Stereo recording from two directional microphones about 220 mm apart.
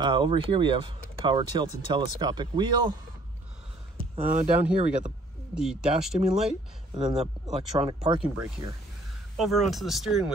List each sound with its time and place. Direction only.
0.0 s speech: 20° right (ahead or behind)
4.2 s speech: 35° right (ahead or behind)
5.5 s speech: 5° right (ahead or behind)
6.9 s speech: 20° right (ahead or behind)
8.4 s speech: 5° right (ahead or behind)